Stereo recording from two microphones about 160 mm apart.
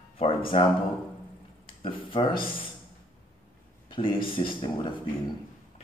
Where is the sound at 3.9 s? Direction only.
30° left (ahead or behind).